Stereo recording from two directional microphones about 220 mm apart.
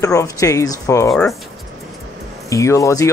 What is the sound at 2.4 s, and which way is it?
Speech, 15° left (ahead or behind).